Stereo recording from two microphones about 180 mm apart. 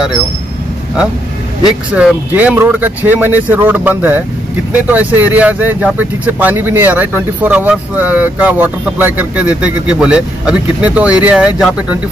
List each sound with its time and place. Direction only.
2.0 s speech: 5° right (ahead or behind)